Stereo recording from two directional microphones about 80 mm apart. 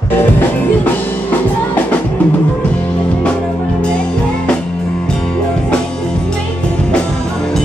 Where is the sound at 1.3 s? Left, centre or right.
Left.